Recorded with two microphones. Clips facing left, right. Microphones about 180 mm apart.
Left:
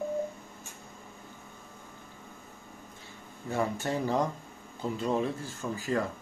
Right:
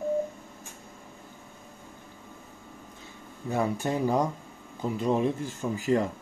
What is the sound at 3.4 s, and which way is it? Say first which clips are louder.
Speech: right 3 dB; 15° right (ahead or behind).